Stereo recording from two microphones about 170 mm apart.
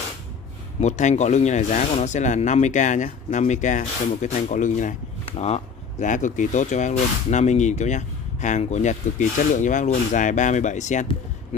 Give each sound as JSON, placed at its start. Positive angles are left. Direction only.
{"t": 0.7, "sound": "speech", "side_deg": 45}